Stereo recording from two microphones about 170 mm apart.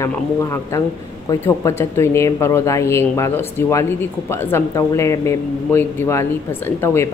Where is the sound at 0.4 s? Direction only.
15° left (ahead or behind).